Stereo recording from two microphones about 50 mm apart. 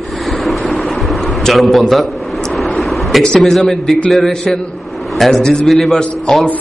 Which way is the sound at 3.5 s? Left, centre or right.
Centre.